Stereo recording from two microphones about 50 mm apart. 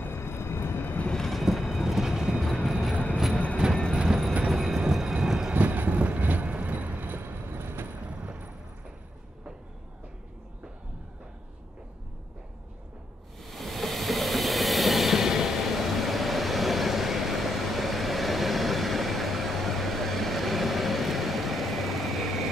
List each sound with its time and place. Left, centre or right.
0.0 s vehicle: left
1.1 s train: centre
1.4 s train: centre
2.4 s train: centre
3.9 s train: centre
5.5 s train: right
8.1 s a sound: right
13.4 s train: centre